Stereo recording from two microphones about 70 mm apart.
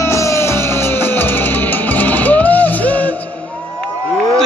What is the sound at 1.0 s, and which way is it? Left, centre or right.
Music, left.